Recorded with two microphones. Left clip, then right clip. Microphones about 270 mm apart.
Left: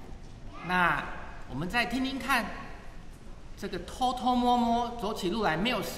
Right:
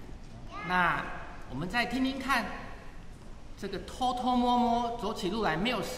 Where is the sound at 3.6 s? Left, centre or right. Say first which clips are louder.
Left 2 dB; centre.